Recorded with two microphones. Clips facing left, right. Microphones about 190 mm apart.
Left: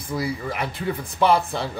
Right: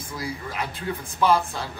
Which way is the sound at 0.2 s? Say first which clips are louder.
Left 2 dB; 60° left (ahead or behind).